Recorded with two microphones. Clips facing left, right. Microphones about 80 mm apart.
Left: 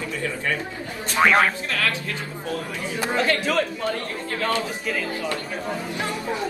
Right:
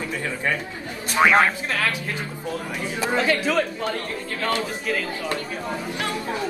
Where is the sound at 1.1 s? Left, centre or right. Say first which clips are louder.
Right 1 dB; centre.